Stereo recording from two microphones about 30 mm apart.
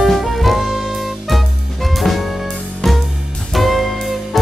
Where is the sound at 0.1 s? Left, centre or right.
Centre.